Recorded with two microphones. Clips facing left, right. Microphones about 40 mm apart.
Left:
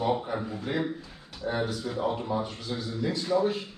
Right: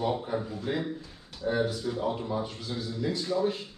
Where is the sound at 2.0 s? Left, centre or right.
Centre.